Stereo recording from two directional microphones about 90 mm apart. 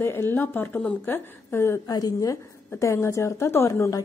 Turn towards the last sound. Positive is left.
turn(degrees=30)  # may be behind; listen again after turning